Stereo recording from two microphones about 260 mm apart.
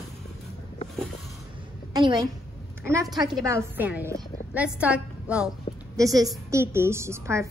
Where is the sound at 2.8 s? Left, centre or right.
Centre.